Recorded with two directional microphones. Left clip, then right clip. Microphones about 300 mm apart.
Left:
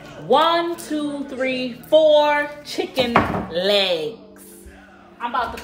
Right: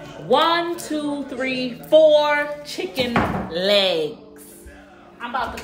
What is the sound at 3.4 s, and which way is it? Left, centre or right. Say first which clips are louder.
Speech: even; centre.